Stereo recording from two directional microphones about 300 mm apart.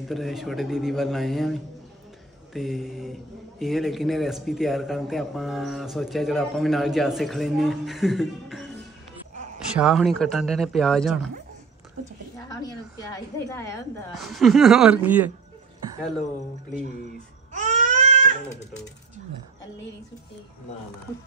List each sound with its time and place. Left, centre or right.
0.0 s speech: centre
9.8 s speech: centre
13.1 s a woman's voice: centre
14.1 s speech: centre
17.5 s baby cry: right